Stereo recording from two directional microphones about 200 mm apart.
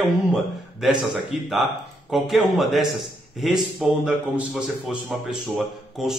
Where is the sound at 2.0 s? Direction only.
Centre (ahead or behind).